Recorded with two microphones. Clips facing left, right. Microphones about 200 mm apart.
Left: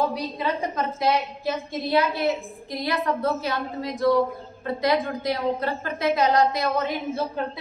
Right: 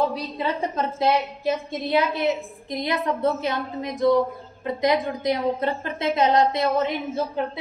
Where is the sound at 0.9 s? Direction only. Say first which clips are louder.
Right 2 dB; 20° right (ahead or behind).